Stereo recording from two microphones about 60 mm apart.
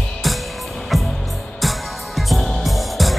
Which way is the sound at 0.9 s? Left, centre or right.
Centre.